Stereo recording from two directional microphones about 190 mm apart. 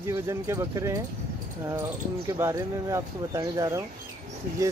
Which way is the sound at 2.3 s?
15° right (ahead or behind).